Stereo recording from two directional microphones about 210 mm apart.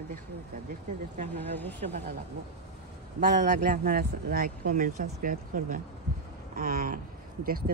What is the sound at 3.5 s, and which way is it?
Speech, 40° right (ahead or behind).